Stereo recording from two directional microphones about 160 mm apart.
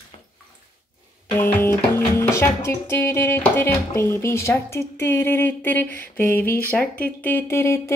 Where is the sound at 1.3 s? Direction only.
15° left (ahead or behind).